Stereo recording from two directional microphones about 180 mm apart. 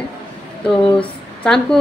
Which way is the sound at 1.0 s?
5° left (ahead or behind).